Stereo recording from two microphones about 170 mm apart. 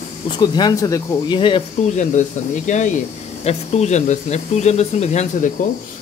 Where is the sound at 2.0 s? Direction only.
45° left (ahead or behind).